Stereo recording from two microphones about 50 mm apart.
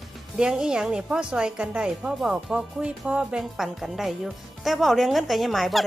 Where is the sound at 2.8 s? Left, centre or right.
Right.